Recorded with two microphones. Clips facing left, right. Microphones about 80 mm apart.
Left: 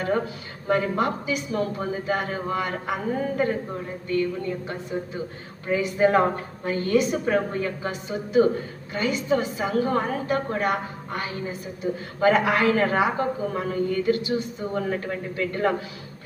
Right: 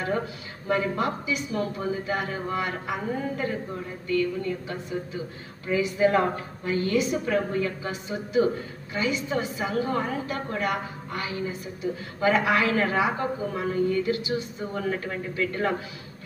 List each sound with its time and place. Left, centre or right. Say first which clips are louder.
0.7 s a man's voice: left 3 dB; left
15.3 s a man's voice: left 2 dB; left